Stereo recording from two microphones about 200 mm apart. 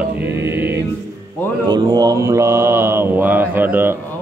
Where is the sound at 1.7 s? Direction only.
20° right (ahead or behind).